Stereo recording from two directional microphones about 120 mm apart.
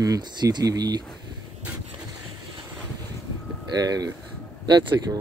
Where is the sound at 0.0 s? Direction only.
35° right (ahead or behind).